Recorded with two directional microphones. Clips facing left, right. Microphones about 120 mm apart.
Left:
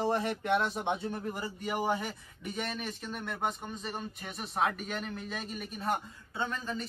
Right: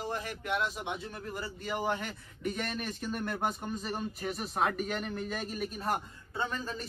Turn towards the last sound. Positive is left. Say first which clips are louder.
# even
turn(degrees=0)  # may be behind; listen again after turning